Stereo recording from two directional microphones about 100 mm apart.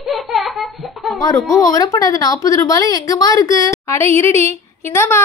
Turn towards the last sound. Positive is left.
turn(degrees=25)  # may be behind; listen again after turning